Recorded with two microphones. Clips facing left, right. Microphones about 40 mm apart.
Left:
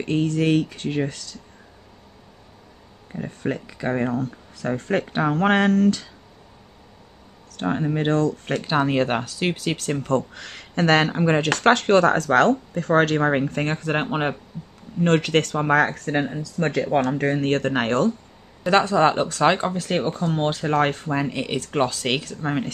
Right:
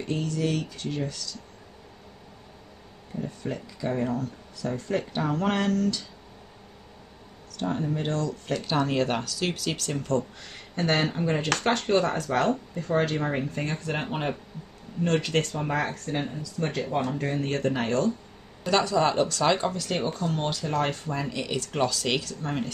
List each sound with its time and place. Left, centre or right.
0.0 s speech: left
3.2 s speech: left
7.5 s speech: left
8.6 s speech: left
10.3 s speech: left
15.0 s speech: left
18.7 s speech: left
20.0 s speech: left